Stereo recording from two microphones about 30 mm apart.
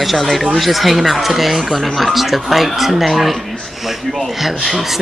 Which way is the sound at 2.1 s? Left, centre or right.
Centre.